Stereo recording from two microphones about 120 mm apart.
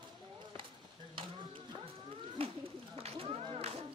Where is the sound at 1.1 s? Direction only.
45° right (ahead or behind).